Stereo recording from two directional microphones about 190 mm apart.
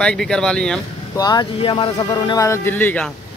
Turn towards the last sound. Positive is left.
turn(degrees=10)  # may be behind; listen again after turning